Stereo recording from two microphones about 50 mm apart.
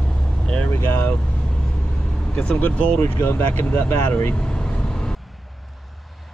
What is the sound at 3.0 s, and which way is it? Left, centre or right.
Speech, left.